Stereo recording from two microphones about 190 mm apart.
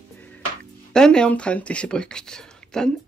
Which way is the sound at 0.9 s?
5° left (ahead or behind).